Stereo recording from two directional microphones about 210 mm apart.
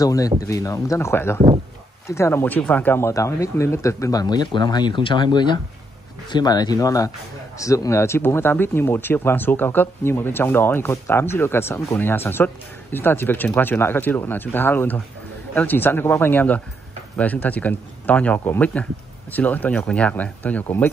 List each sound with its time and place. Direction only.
0.0 s speech: 15° left (ahead or behind)